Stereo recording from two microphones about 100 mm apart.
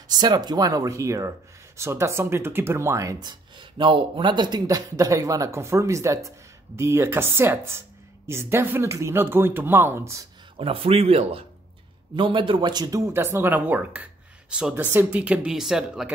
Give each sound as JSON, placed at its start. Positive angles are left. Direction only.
{"t": 0.1, "sound": "speech", "side_deg": -45}
{"t": 3.2, "sound": "speech", "side_deg": -50}
{"t": 10.6, "sound": "speech", "side_deg": -70}
{"t": 12.2, "sound": "a man's voice", "side_deg": -55}
{"t": 13.0, "sound": "speech", "side_deg": -25}